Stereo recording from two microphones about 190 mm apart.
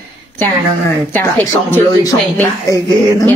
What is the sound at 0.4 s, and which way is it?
A woman's voice, 15° left (ahead or behind).